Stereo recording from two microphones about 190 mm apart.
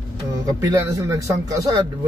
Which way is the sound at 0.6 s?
15° right (ahead or behind).